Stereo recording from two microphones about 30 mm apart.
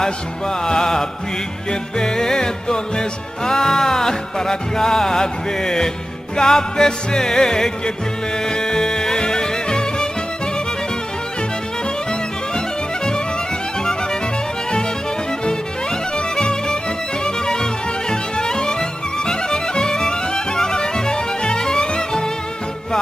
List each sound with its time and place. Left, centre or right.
0.0 s music: left
12.1 s music: left
16.2 s music: left